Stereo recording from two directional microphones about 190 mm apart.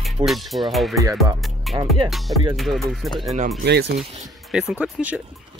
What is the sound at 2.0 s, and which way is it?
Speech, centre (ahead or behind).